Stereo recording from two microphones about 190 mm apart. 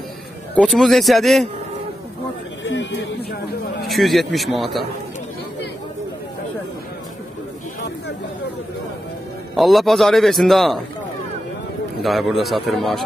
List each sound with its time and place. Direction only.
0.6 s a man's voice: centre (ahead or behind)
2.6 s a sound: 70° left (ahead or behind)
3.8 s a man's voice: centre (ahead or behind)
9.6 s a man's voice: centre (ahead or behind)
12.0 s a man's voice: centre (ahead or behind)